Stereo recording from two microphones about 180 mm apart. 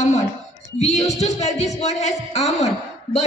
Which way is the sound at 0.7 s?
40° left (ahead or behind).